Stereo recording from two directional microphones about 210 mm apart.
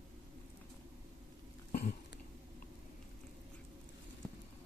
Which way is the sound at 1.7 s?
40° left (ahead or behind).